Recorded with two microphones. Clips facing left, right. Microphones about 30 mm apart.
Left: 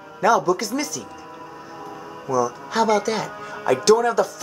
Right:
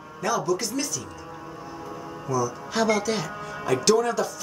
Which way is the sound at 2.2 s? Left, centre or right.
Centre.